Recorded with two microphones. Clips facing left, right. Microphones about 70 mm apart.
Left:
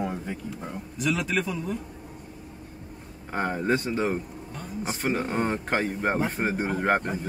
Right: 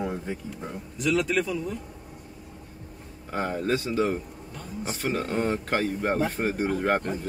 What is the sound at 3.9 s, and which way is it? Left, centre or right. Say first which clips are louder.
Speech: right 1 dB; left.